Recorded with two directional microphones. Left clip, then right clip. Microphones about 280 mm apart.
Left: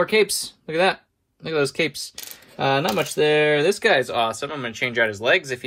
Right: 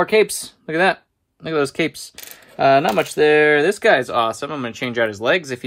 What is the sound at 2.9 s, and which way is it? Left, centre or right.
Speech, right.